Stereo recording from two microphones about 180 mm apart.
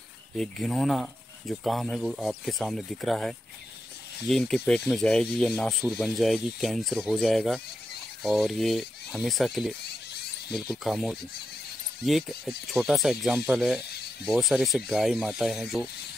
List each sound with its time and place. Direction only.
0.4 s speech: centre (ahead or behind)
9.8 s a sound: 60° left (ahead or behind)
10.5 s speech: centre (ahead or behind)